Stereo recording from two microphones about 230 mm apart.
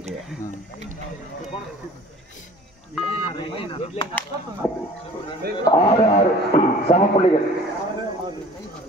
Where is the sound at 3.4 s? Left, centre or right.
Left.